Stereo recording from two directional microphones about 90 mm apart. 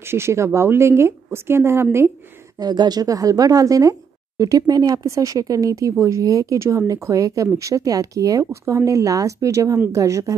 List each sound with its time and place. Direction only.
0.0 s a woman's voice: 30° right (ahead or behind)
2.6 s speech: 50° right (ahead or behind)